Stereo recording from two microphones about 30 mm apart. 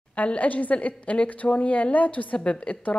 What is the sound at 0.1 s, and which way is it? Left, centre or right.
A woman's voice, left.